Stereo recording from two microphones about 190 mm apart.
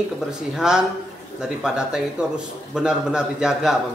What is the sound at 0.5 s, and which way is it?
A man's voice, 5° right (ahead or behind).